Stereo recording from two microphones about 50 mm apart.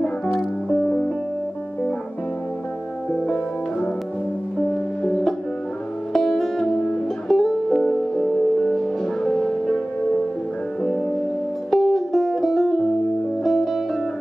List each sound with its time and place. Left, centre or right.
0.8 s music: left
4.6 s music: centre
11.7 s music: centre